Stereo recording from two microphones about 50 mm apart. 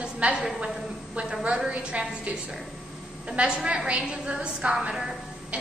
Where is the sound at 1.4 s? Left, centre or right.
Right.